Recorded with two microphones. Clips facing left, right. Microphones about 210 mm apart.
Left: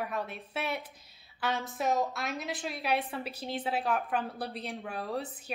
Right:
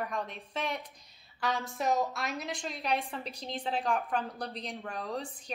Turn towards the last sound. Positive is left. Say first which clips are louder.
# left 1 dB
turn(degrees=5)  # may be behind; listen again after turning